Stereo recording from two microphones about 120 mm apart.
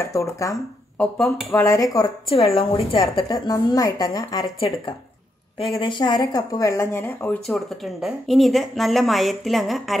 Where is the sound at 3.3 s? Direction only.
30° left (ahead or behind).